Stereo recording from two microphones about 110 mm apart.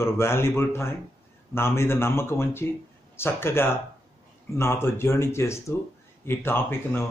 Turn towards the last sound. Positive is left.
turn(degrees=20)  # may be behind; listen again after turning